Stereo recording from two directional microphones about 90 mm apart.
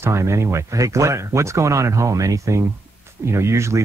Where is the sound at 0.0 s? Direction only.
30° right (ahead or behind).